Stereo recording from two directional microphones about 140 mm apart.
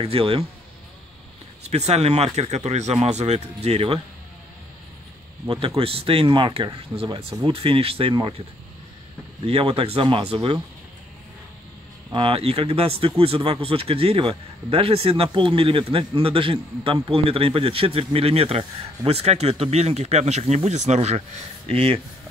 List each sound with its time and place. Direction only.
0.0 s a man's voice: 45° right (ahead or behind)
1.7 s a man's voice: 50° right (ahead or behind)
5.8 s speech: 40° right (ahead or behind)
9.5 s a man's voice: 45° right (ahead or behind)
12.1 s a man's voice: 40° right (ahead or behind)